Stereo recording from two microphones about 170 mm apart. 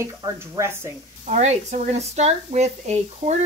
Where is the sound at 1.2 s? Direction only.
45° right (ahead or behind).